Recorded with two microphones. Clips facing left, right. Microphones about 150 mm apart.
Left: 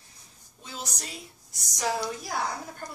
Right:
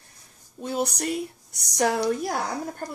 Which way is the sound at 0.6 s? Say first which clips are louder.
Right 13 dB; 55° right (ahead or behind).